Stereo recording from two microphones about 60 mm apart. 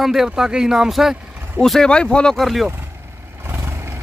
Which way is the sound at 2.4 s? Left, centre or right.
Centre.